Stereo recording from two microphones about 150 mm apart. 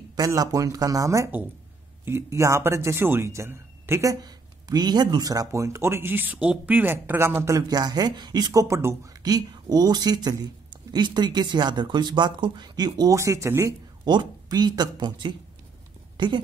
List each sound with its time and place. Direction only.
0.1 s speech: 25° right (ahead or behind)